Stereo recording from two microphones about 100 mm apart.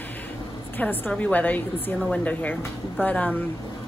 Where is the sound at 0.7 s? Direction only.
20° left (ahead or behind).